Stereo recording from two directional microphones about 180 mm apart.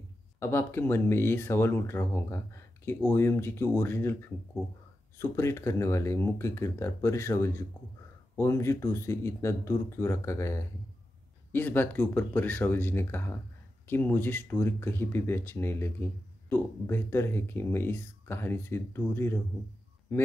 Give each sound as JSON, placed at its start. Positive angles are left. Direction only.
{"t": 0.4, "sound": "speech", "side_deg": 15}